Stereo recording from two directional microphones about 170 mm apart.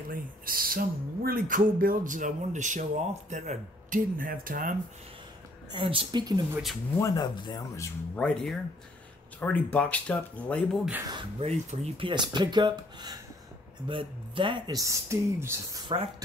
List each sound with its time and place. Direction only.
0.1 s speech: 60° right (ahead or behind)
5.7 s speech: 30° right (ahead or behind)
7.0 s speech: 20° left (ahead or behind)
8.2 s speech: 5° left (ahead or behind)
11.1 s speech: 30° right (ahead or behind); by 15.8 s 15° right (ahead or behind)